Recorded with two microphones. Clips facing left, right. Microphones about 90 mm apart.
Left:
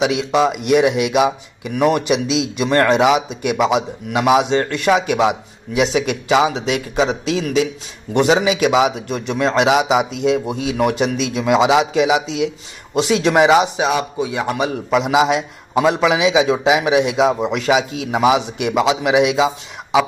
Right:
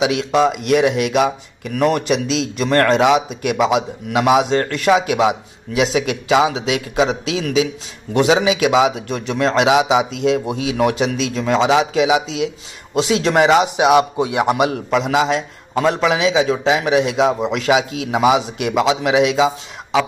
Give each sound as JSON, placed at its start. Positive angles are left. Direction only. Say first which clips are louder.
{"t": 0.0, "sound": "speech", "louder": "even", "side_deg": 0}
{"t": 13.7, "sound": "a man's voice", "louder": "right 5 dB", "side_deg": -15}
{"t": 14.7, "sound": "speech", "louder": "left 1 dB", "side_deg": 5}